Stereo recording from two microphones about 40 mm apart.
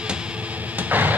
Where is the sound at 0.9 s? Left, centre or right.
Right.